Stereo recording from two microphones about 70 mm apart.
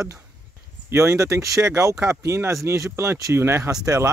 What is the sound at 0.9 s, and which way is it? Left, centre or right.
Speech, right.